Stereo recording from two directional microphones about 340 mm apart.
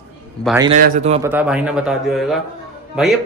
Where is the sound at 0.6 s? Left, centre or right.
Centre.